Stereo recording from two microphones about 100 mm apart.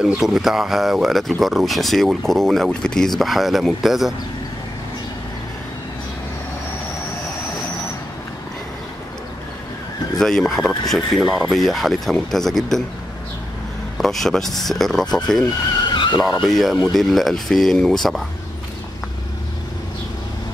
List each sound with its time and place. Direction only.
0.0 s speech: 5° right (ahead or behind)
10.1 s speech: 5° left (ahead or behind)
13.9 s speech: centre (ahead or behind)
15.9 s vehicle: 50° left (ahead or behind)
16.2 s speech: centre (ahead or behind)